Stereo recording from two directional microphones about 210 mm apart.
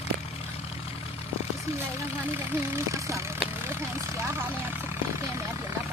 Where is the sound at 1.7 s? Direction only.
30° left (ahead or behind).